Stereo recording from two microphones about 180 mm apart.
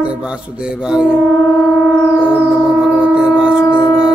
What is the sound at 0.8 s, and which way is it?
Mantra, 5° right (ahead or behind).